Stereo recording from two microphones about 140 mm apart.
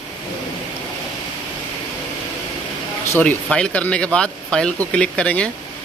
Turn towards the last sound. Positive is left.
turn(degrees=10)  # may be behind; listen again after turning